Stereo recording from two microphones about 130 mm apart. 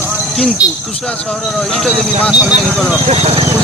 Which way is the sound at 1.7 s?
Centre (ahead or behind).